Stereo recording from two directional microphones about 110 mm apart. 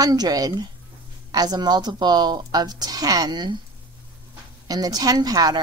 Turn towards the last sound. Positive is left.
turn(degrees=-35)  # may be behind; listen again after turning